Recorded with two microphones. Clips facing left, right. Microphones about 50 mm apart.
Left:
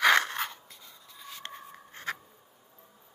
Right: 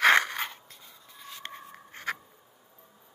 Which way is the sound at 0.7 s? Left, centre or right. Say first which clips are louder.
Even; centre.